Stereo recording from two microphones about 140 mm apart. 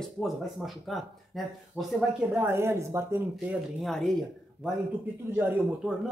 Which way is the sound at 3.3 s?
Centre (ahead or behind).